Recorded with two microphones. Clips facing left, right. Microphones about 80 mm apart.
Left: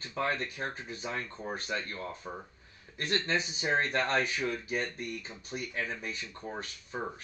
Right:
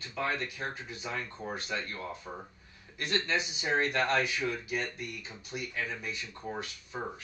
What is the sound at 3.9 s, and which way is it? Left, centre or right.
Speech, left.